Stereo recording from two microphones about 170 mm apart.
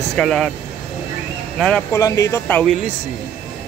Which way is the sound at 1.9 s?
20° left (ahead or behind).